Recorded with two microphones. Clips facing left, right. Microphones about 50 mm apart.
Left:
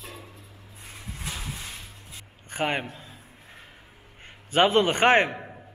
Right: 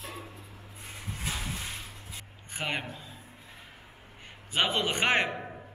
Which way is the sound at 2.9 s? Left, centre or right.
Left.